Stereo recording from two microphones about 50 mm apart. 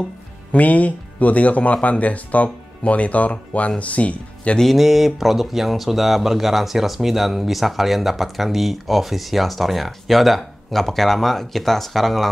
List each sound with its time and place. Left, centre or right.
0.5 s speech: left
4.7 s speech: centre